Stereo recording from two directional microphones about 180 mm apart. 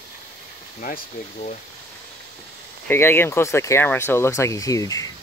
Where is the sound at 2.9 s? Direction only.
10° left (ahead or behind).